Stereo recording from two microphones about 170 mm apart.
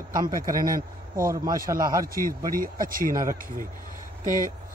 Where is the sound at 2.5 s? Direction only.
55° right (ahead or behind).